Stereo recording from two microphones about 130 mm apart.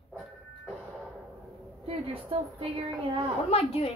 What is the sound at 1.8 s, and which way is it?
Speech, 45° right (ahead or behind).